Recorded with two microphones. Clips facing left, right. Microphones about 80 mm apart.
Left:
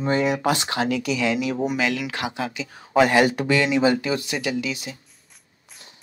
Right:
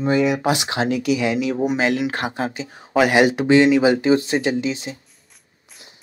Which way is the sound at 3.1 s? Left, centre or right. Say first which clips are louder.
Right 4 dB; right.